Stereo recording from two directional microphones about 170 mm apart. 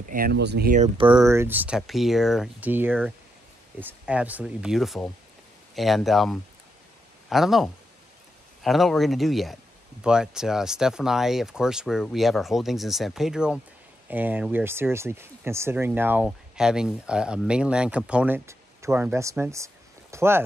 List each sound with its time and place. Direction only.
0.1 s speech: 65° right (ahead or behind)
0.9 s speech: 30° right (ahead or behind)
1.2 s speech: 15° right (ahead or behind)